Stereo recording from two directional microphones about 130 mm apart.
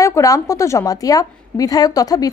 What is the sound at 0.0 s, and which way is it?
A woman's voice, 25° left (ahead or behind).